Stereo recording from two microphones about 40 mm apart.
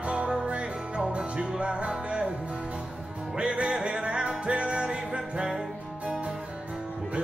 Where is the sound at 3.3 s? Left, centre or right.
Right.